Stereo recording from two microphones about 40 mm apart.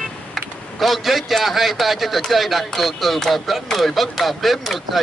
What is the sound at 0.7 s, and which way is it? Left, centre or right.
Speech, centre.